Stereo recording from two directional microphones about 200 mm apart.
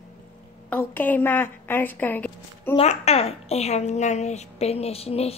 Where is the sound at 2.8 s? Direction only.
30° left (ahead or behind).